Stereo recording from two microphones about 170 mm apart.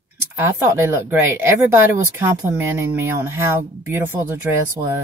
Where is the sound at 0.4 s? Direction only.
15° right (ahead or behind).